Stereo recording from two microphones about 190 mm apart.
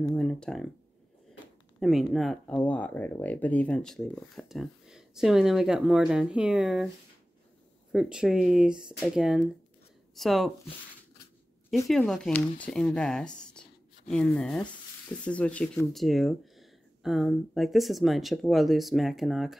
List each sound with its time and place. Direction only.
0.0 s speech: 5° left (ahead or behind)
1.8 s speech: centre (ahead or behind)
7.9 s speech: 5° right (ahead or behind)
11.9 s speech: centre (ahead or behind)